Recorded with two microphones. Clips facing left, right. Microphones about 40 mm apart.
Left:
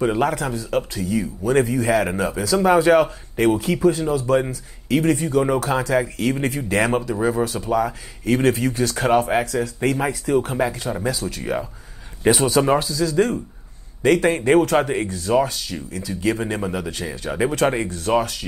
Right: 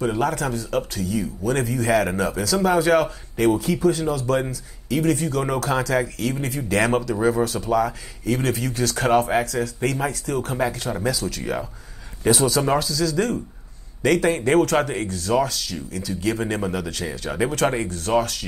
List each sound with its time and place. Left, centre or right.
0.1 s speech: left
11.1 s speech: left
16.3 s speech: centre
16.7 s speech: left